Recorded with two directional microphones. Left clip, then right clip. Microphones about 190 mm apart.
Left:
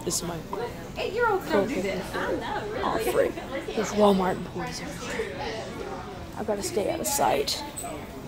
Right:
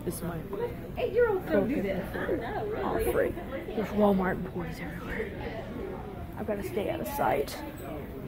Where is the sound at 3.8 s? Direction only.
15° left (ahead or behind).